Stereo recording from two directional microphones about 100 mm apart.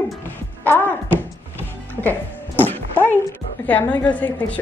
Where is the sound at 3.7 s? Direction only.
15° left (ahead or behind).